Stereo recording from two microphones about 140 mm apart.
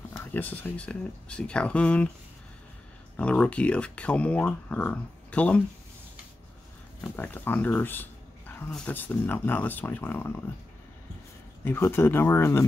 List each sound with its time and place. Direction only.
0.2 s speech: 15° left (ahead or behind)
3.2 s speech: 10° left (ahead or behind)
7.0 s speech: 10° left (ahead or behind)
11.6 s speech: 15° left (ahead or behind)